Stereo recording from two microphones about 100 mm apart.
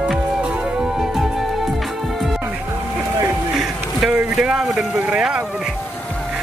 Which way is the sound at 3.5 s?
5° right (ahead or behind).